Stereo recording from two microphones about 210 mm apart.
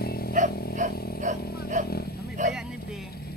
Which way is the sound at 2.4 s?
35° right (ahead or behind).